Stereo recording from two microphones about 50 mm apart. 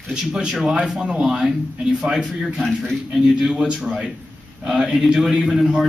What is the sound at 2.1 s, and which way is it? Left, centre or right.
A man's voice, centre.